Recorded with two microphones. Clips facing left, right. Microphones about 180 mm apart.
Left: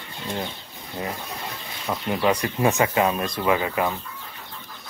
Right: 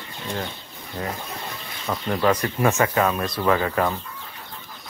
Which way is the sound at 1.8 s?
10° left (ahead or behind).